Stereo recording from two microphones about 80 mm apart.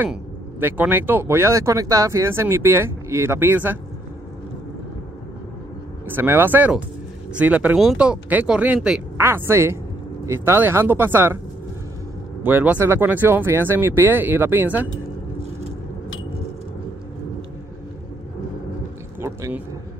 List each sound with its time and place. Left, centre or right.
0.6 s speech: right
1.2 s speech: right
6.0 s speech: right
7.7 s speech: centre
8.0 s speech: centre
9.2 s speech: right
12.4 s speech: right